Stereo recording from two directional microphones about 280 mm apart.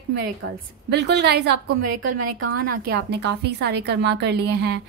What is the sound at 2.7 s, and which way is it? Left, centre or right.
A woman's voice, right.